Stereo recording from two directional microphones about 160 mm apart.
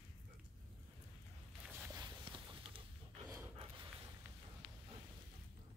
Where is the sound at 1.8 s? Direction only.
20° right (ahead or behind).